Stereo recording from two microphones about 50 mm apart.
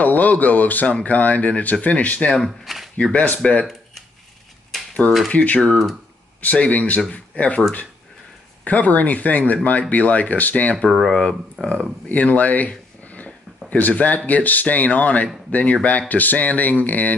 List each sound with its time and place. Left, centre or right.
0.0 s speech: left
2.4 s speech: centre
3.0 s speech: left
4.7 s a sound: centre
5.3 s speech: left
8.6 s speech: left; by 11.7 s centre
12.1 s speech: left